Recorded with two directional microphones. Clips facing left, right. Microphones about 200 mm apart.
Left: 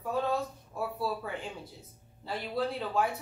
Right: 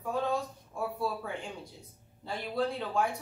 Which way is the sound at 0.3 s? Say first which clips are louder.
Left 1 dB; 5° left (ahead or behind).